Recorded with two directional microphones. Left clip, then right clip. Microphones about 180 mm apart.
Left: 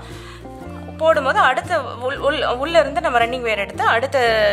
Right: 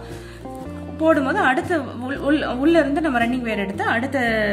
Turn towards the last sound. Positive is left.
turn(degrees=40)  # may be behind; listen again after turning